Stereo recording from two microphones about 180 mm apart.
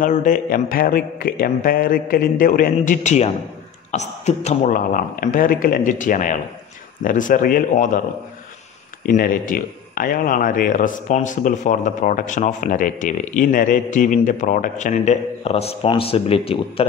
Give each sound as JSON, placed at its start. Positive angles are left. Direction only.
{"t": 0.0, "sound": "a man's voice", "side_deg": 45}
{"t": 9.0, "sound": "a man's voice", "side_deg": 55}